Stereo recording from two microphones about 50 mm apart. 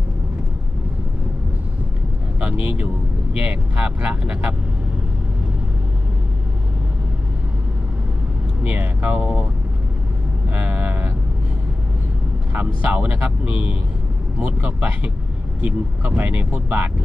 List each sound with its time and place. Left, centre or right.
2.4 s a sound: right
3.3 s speech: right
8.6 s speech: right
10.5 s vehicle: right
12.5 s speech: right